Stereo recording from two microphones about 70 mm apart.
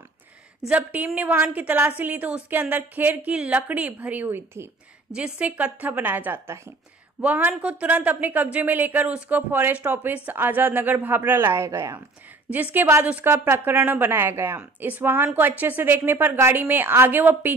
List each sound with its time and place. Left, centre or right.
0.7 s speech: centre
5.1 s speech: centre; by 6.6 s right
7.2 s speech: right
12.7 s a woman's voice: right
16.3 s a woman's voice: right
16.5 s speech: right